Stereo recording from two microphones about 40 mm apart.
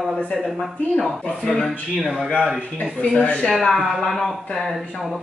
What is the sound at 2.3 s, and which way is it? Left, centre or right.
Speech, right.